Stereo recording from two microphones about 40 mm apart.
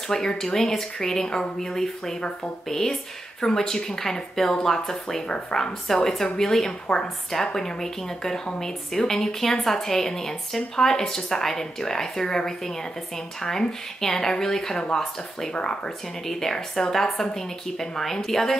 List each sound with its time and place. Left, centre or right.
0.1 s a woman's voice: centre